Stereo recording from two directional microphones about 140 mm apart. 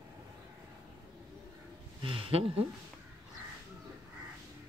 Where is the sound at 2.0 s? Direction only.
40° right (ahead or behind).